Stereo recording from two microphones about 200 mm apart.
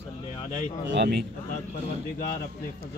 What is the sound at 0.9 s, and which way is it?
Speech, 60° right (ahead or behind).